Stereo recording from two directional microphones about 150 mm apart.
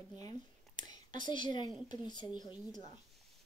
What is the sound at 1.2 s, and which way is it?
A woman's voice, 30° left (ahead or behind).